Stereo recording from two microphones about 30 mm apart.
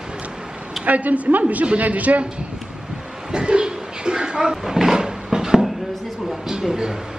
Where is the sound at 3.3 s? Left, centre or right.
Right.